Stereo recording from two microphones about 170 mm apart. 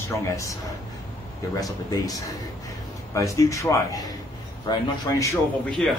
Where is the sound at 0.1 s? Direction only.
20° left (ahead or behind).